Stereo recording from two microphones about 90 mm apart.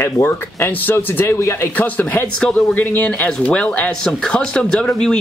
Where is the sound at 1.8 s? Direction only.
20° left (ahead or behind).